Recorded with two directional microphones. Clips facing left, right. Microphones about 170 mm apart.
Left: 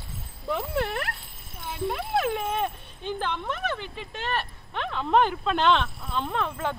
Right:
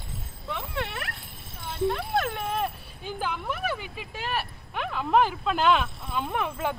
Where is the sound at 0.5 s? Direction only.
45° left (ahead or behind).